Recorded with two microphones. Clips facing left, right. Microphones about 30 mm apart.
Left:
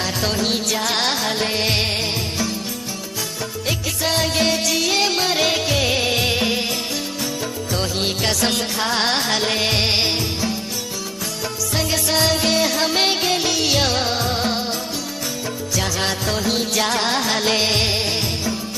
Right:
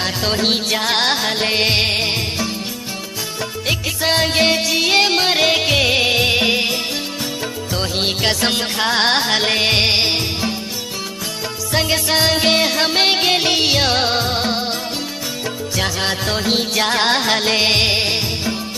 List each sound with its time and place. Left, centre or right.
0.3 s music: right
3.6 s music: right
7.7 s music: right
11.7 s music: right
16.1 s music: right